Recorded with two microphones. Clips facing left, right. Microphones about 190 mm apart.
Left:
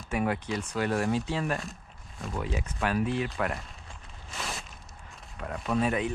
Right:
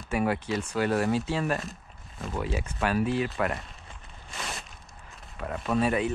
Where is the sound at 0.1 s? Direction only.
5° right (ahead or behind).